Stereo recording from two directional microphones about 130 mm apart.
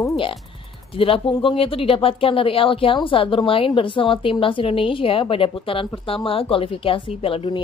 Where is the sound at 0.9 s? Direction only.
45° left (ahead or behind).